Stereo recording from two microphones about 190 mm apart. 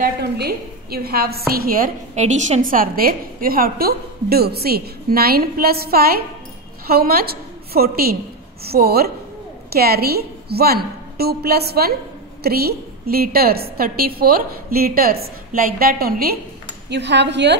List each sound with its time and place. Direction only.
0.0 s a woman's voice: 55° right (ahead or behind)
16.9 s a woman's voice: 65° right (ahead or behind)